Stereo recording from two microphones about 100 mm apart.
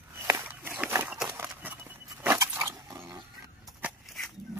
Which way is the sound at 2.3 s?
30° right (ahead or behind).